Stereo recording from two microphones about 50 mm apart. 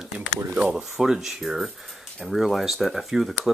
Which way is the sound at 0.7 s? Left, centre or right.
Centre.